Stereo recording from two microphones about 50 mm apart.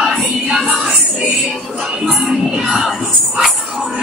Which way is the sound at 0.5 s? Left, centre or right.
Centre.